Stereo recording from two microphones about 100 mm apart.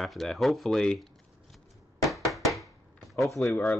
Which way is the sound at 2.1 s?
Centre (ahead or behind).